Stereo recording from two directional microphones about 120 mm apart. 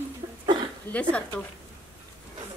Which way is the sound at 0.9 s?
10° left (ahead or behind).